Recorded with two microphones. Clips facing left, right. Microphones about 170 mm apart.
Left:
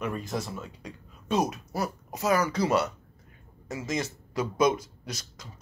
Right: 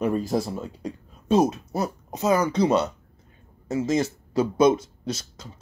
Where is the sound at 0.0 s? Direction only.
35° right (ahead or behind).